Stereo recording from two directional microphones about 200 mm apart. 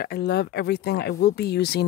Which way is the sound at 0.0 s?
55° left (ahead or behind).